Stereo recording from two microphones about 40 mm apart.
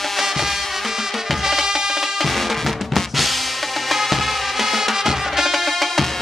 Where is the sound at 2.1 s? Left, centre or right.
Centre.